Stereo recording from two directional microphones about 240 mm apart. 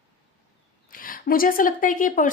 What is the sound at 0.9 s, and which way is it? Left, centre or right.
Speech, left.